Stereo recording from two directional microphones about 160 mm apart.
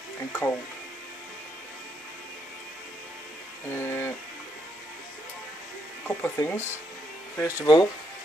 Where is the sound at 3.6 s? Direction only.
15° left (ahead or behind).